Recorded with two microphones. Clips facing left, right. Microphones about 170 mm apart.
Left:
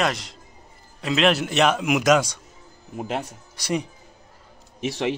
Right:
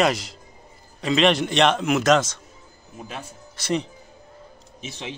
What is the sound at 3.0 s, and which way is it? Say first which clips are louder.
Speech: left 8 dB; 75° left (ahead or behind).